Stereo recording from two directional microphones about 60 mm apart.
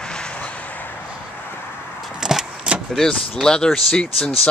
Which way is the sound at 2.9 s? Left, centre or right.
Centre.